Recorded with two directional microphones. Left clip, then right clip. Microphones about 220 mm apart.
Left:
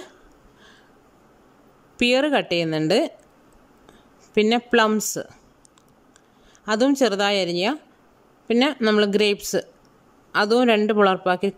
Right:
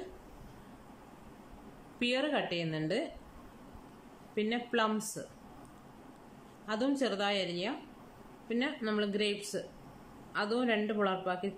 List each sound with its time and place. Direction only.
2.0 s speech: 50° left (ahead or behind)
4.4 s speech: 50° left (ahead or behind)
6.6 s speech: 50° left (ahead or behind)